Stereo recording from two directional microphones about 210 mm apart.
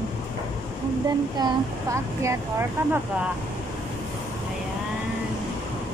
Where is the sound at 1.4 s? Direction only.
20° right (ahead or behind).